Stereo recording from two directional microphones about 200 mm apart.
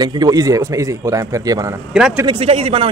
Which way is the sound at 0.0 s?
20° right (ahead or behind).